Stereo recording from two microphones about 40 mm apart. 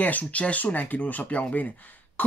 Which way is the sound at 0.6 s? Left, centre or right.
Left.